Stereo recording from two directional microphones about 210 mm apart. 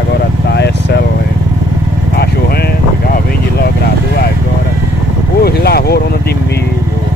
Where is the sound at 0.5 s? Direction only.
50° left (ahead or behind).